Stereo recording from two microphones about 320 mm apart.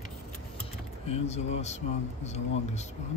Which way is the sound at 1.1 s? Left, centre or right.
Centre.